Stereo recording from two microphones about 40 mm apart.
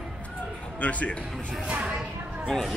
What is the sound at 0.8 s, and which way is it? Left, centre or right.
Speech, left.